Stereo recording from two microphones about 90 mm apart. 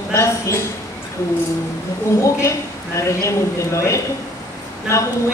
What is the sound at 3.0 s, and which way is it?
Speech, 35° left (ahead or behind).